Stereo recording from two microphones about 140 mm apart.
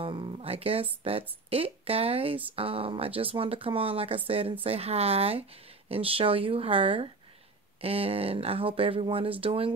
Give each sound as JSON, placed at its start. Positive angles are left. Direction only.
{"t": 0.0, "sound": "speech", "side_deg": -40}